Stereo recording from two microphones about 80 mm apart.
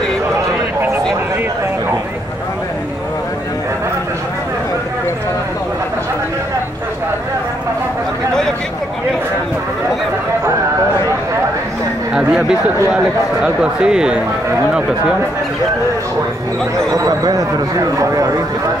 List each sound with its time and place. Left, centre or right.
12.1 s a man's voice: centre
16.9 s speech: right